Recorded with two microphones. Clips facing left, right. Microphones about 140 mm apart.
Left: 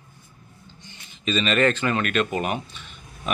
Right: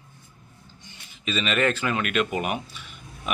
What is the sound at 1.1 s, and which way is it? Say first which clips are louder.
Speech: left 3 dB; 5° right (ahead or behind).